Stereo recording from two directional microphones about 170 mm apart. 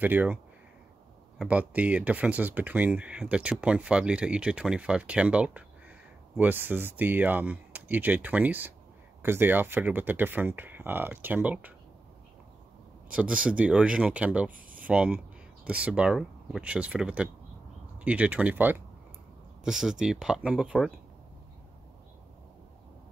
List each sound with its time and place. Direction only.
0.0 s speech: 10° right (ahead or behind)
1.4 s speech: 10° right (ahead or behind)
13.1 s speech: 5° right (ahead or behind)
14.5 s a sound: 55° right (ahead or behind)
14.9 s speech: 10° right (ahead or behind)